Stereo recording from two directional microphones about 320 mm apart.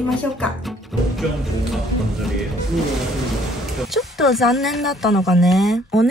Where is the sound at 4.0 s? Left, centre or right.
Centre.